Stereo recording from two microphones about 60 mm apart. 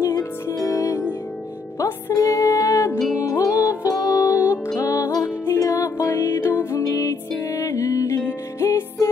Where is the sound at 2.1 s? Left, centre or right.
Left.